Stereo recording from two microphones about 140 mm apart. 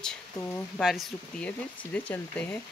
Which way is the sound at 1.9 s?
10° left (ahead or behind).